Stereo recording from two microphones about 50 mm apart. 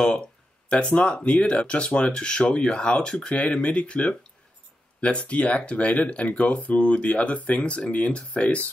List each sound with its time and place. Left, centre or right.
0.7 s speech: left